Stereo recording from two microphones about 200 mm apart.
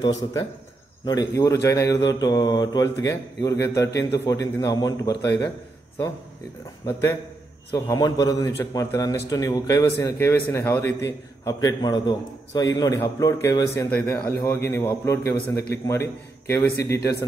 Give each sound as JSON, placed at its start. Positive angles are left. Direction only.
{"t": 0.0, "sound": "a man's voice", "side_deg": 20}
{"t": 7.7, "sound": "a man's voice", "side_deg": 15}